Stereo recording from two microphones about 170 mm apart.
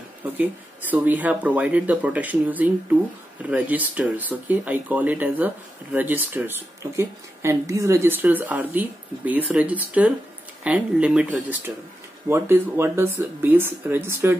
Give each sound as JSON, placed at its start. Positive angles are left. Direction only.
{"t": 0.2, "sound": "speech", "side_deg": -10}